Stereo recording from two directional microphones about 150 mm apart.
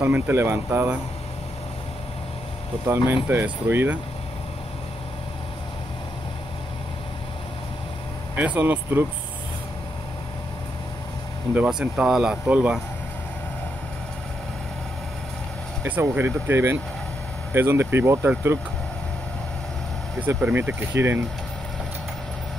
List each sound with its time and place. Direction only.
0.0 s speech: 15° right (ahead or behind)
3.3 s speech: 15° right (ahead or behind)
8.4 s speech: 10° right (ahead or behind)
11.5 s speech: 10° right (ahead or behind)
15.8 s speech: 15° right (ahead or behind)
20.2 s speech: 10° right (ahead or behind)